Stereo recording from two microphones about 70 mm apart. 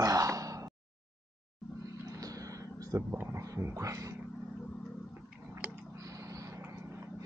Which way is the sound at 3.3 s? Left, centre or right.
Right.